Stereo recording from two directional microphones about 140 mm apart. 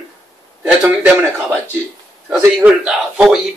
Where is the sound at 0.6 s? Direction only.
15° right (ahead or behind).